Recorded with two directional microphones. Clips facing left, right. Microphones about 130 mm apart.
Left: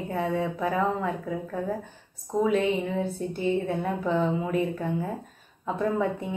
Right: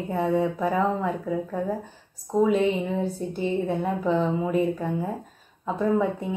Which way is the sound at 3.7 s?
Centre (ahead or behind).